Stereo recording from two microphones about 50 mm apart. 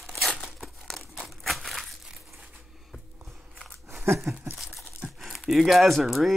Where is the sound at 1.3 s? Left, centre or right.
Centre.